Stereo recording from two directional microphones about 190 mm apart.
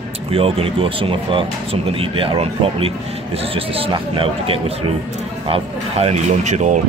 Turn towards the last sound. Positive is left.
turn(degrees=-40)  # may be behind; listen again after turning